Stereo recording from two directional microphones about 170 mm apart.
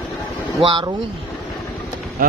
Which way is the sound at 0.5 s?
30° right (ahead or behind).